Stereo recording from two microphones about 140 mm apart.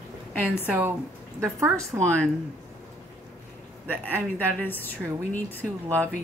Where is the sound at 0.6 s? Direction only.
15° right (ahead or behind).